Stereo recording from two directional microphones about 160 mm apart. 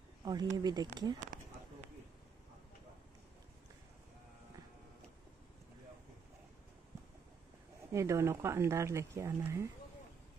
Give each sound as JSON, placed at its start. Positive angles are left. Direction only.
{"t": 0.2, "sound": "speech", "side_deg": -25}
{"t": 7.9, "sound": "speech", "side_deg": -20}